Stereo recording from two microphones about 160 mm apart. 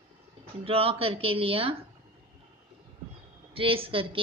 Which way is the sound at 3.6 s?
35° right (ahead or behind).